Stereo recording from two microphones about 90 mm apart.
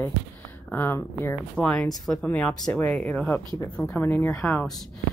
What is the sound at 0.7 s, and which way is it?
Speech, 25° left (ahead or behind).